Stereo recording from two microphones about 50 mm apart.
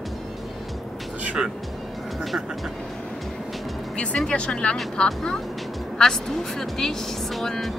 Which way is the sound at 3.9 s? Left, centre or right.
Left.